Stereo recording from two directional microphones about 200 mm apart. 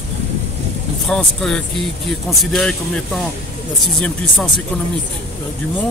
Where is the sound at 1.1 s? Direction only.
Centre (ahead or behind).